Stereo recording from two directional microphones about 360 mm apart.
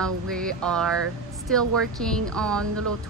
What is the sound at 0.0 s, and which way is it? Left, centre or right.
Speech, centre.